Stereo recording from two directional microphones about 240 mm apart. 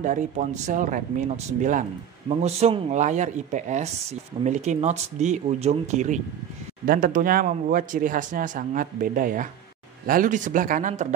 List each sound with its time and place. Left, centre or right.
0.0 s speech: right